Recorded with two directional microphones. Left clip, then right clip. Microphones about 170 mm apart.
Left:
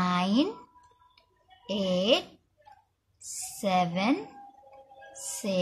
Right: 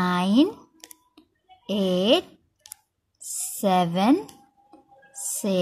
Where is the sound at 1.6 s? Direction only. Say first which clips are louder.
Right 4 dB; 40° right (ahead or behind).